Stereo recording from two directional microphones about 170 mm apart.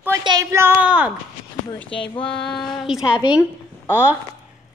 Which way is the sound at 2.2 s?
5° left (ahead or behind).